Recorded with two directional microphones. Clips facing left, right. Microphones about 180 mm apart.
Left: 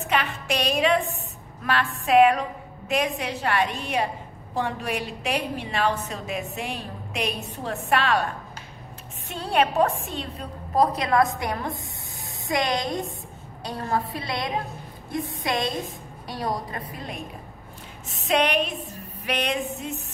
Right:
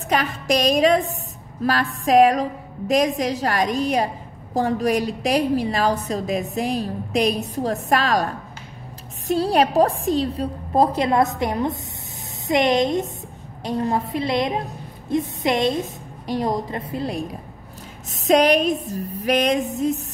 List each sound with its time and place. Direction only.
0.0 s a woman's voice: 40° right (ahead or behind)
9.3 s a woman's voice: 35° right (ahead or behind)